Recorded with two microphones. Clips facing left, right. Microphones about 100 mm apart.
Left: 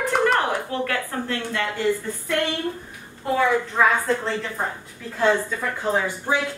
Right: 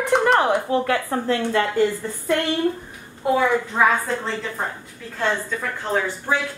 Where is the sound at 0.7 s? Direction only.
20° right (ahead or behind).